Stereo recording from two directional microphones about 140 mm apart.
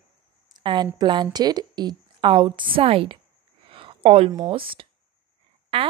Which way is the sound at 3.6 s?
40° right (ahead or behind).